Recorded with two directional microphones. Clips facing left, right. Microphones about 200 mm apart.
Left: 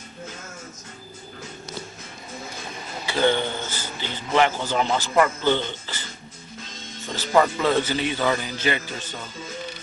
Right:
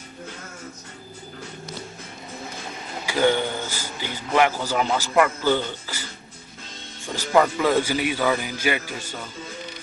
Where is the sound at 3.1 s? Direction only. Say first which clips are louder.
Right 1 dB; 10° right (ahead or behind).